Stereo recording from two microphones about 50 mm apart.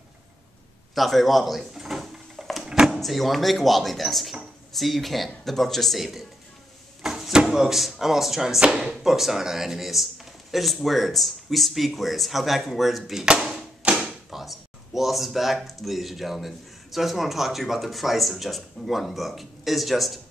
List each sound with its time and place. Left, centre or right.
0.9 s speech: centre
1.7 s a sound: centre
2.6 s door: centre
3.0 s speech: centre
13.2 s tap: centre
13.9 s speech: centre